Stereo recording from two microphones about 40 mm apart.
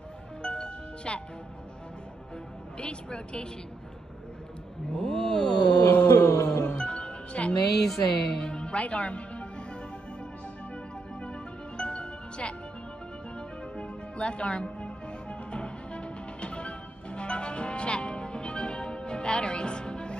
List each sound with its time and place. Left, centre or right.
0.4 s music: left
2.8 s a woman's voice: left
4.9 s a sound: centre
5.9 s a sound: left
6.6 s music: left
7.8 s music: centre
8.5 s music: left
11.1 s music: left
13.7 s music: left